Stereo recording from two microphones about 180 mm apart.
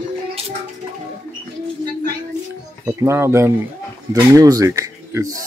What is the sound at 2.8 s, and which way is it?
Speech, 15° right (ahead or behind).